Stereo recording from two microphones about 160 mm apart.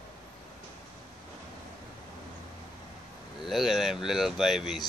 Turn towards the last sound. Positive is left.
turn(degrees=0)  # may be behind; listen again after turning